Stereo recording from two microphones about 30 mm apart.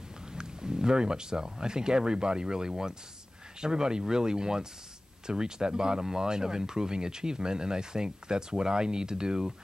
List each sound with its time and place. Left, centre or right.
0.3 s speech: right